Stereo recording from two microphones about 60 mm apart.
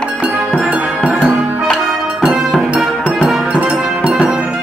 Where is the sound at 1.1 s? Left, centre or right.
Centre.